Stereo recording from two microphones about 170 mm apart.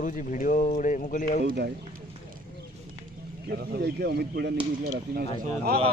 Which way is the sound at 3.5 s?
70° right (ahead or behind).